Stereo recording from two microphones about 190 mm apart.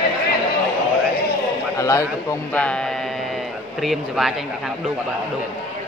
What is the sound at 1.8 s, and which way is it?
Speech, 15° left (ahead or behind).